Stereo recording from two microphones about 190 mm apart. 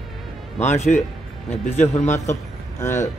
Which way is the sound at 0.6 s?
35° left (ahead or behind).